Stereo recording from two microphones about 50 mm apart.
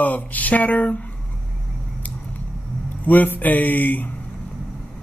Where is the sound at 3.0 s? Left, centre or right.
Left.